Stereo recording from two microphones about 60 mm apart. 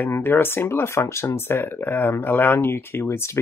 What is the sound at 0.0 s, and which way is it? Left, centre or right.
Speech, left.